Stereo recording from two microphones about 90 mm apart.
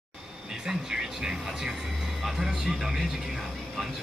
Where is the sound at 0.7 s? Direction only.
5° right (ahead or behind).